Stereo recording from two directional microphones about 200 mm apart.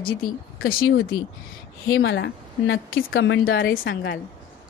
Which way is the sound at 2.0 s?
60° left (ahead or behind).